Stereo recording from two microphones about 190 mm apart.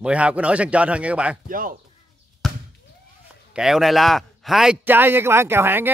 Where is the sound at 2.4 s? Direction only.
Centre (ahead or behind).